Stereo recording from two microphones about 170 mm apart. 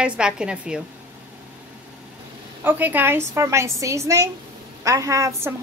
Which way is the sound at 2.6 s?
10° right (ahead or behind).